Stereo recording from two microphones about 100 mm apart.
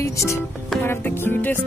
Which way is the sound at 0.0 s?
30° left (ahead or behind).